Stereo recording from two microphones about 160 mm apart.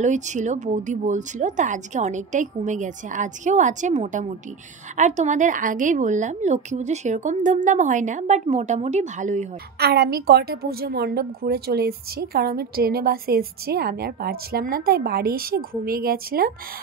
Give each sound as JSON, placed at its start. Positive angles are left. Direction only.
{"t": 0.0, "sound": "a woman's voice", "side_deg": -50}
{"t": 9.8, "sound": "a woman's voice", "side_deg": -90}